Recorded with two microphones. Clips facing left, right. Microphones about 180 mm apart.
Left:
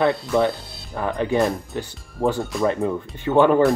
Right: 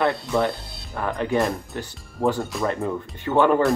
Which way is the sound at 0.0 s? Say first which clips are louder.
Left 3 dB; centre (ahead or behind).